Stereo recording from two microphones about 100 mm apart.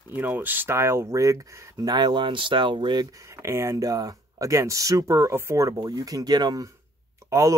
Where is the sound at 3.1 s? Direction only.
30° right (ahead or behind).